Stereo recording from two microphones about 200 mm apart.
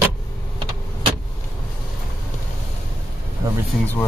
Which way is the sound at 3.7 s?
Centre (ahead or behind).